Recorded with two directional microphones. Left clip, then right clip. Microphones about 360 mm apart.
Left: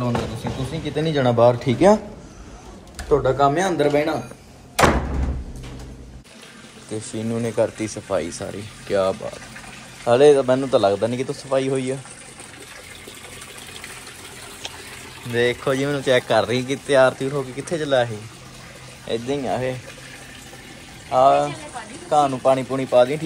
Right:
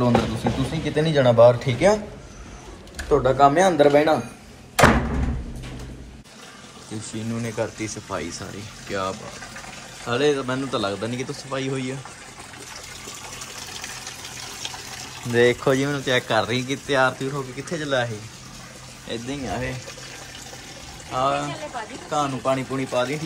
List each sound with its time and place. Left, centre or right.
0.0 s speech: centre
3.1 s speech: centre
7.0 s speech: centre
15.3 s speech: centre
21.1 s speech: centre